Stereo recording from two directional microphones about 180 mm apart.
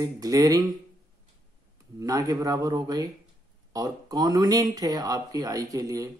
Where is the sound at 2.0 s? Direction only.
20° right (ahead or behind).